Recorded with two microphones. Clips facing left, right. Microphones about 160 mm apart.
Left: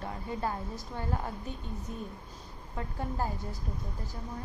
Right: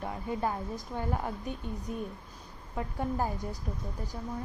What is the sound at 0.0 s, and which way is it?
A woman's voice, 15° right (ahead or behind).